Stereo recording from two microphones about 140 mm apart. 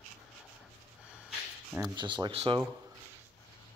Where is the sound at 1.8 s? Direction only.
35° right (ahead or behind).